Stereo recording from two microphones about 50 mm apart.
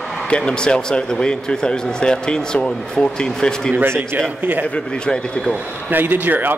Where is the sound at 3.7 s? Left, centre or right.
Right.